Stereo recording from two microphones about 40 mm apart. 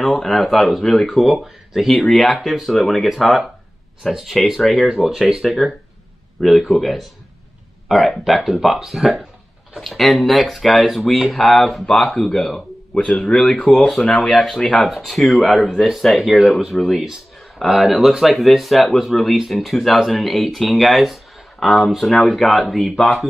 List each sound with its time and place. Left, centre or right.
0.0 s speech: centre
1.1 s speech: centre
2.0 s speech: centre
6.7 s speech: centre
8.2 s speech: centre
9.8 s speech: centre
11.8 s speech: centre
14.2 s speech: centre